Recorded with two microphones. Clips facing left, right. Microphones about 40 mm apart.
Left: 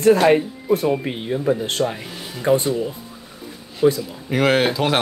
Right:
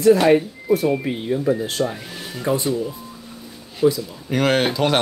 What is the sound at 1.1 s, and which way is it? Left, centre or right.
Speech, left.